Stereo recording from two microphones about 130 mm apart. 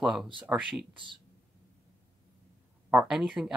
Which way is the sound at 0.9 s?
40° right (ahead or behind).